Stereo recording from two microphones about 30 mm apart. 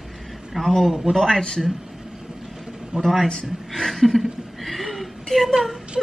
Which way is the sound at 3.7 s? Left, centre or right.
Centre.